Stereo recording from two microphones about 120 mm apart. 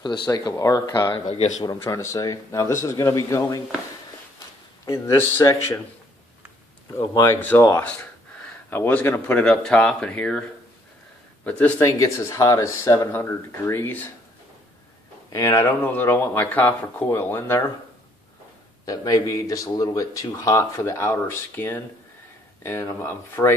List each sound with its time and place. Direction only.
0.0 s speech: 40° left (ahead or behind)
1.8 s speech: 25° left (ahead or behind)
4.8 s speech: 25° left (ahead or behind)
7.0 s speech: 30° left (ahead or behind)
7.3 s speech: 15° left (ahead or behind)
9.4 s speech: 5° left (ahead or behind)
11.4 s speech: 10° left (ahead or behind)
11.8 s speech: 25° left (ahead or behind)
15.2 s speech: 30° left (ahead or behind)
15.8 s speech: 15° left (ahead or behind)
18.9 s speech: 30° left (ahead or behind)